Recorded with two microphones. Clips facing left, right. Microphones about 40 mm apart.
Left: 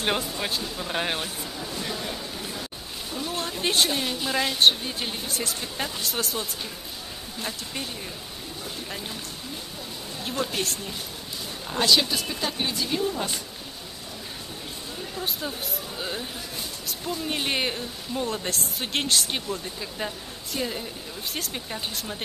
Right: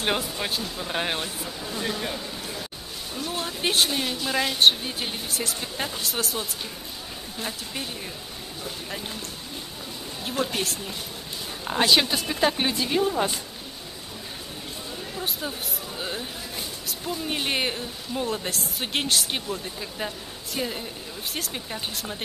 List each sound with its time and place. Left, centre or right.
0.0 s speech: centre
3.3 s speech: centre
10.4 s speech: centre
11.6 s a woman's voice: right
15.1 s speech: centre